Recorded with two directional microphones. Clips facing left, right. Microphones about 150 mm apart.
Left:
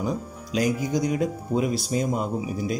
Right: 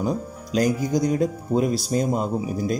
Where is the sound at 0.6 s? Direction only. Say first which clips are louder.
Right 3 dB; 40° right (ahead or behind).